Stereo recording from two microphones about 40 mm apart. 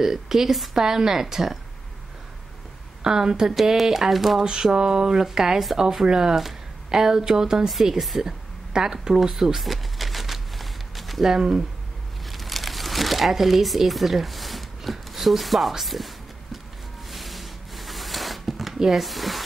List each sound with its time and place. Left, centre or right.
0.0 s speech: centre
3.0 s speech: centre
7.7 s speech: centre
8.2 s a sound: centre
11.3 s speech: centre
12.3 s crumpling: centre
15.8 s speech: centre
17.1 s a sound: centre
18.8 s speech: centre